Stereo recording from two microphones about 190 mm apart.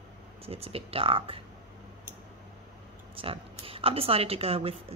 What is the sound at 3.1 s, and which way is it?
Speech, 30° right (ahead or behind).